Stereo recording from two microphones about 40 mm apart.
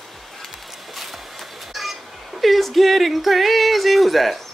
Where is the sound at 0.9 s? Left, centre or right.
Centre.